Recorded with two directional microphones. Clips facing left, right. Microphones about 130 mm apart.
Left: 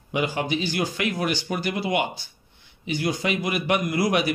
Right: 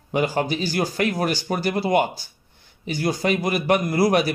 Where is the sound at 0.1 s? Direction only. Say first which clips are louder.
Right 3 dB; 40° right (ahead or behind).